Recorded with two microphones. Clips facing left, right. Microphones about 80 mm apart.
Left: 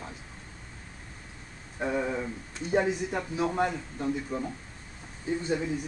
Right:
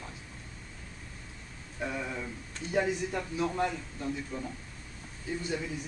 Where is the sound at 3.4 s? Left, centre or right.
Left.